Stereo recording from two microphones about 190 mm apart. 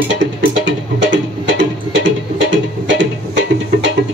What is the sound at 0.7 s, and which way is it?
Music, 75° right (ahead or behind).